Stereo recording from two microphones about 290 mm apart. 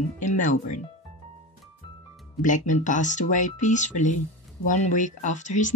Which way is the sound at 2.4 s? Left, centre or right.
Left.